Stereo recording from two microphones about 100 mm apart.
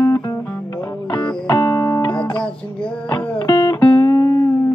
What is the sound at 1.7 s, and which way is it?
Music, 35° left (ahead or behind).